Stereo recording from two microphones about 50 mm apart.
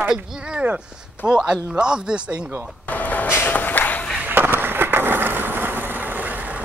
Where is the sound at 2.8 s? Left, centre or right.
Left.